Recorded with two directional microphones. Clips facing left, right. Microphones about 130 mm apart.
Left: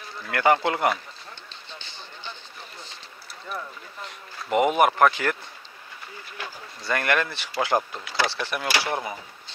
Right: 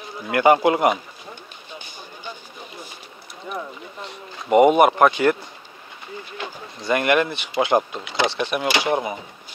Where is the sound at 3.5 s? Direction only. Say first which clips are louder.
Right 4 dB; 25° right (ahead or behind).